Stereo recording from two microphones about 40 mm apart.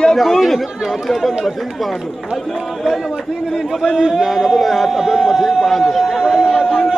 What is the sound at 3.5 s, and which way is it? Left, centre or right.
A man's voice, centre.